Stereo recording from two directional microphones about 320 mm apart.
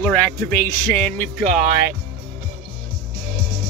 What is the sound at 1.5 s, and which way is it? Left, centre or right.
Speech, right.